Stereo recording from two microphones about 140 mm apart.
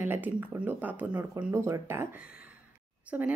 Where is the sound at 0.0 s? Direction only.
15° right (ahead or behind).